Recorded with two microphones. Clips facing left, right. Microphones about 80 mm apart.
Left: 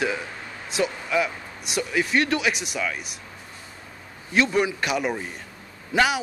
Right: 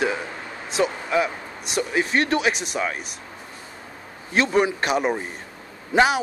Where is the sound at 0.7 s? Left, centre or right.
Right.